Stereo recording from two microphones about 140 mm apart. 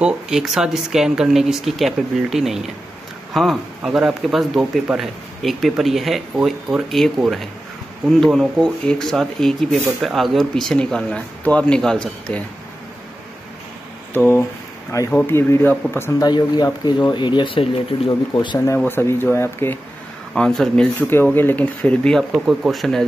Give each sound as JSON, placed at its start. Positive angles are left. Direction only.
{"t": 0.0, "sound": "speech", "side_deg": -5}
{"t": 8.2, "sound": "speech", "side_deg": 0}
{"t": 14.1, "sound": "speech", "side_deg": 15}
{"t": 16.3, "sound": "speech", "side_deg": 30}
{"t": 18.8, "sound": "speech", "side_deg": 15}
{"t": 20.3, "sound": "speech", "side_deg": 5}
{"t": 21.1, "sound": "speech", "side_deg": 15}
{"t": 22.3, "sound": "speech", "side_deg": -5}